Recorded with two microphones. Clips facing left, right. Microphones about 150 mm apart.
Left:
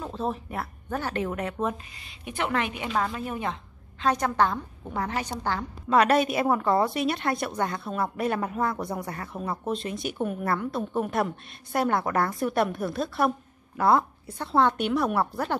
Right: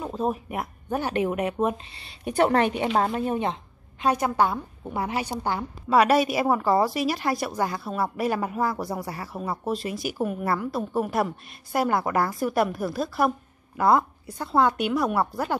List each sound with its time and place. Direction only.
0.0 s speech: 10° right (ahead or behind)
2.0 s a woman's voice: 35° right (ahead or behind)
4.0 s a woman's voice: 10° right (ahead or behind)